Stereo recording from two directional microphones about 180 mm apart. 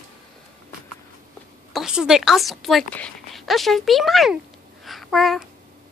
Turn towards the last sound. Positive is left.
turn(degrees=0)  # may be behind; listen again after turning